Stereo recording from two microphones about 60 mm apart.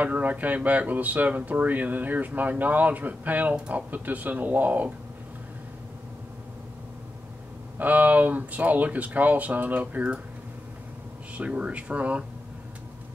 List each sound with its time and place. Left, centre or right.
0.0 s speech: right
7.8 s speech: right
11.3 s speech: centre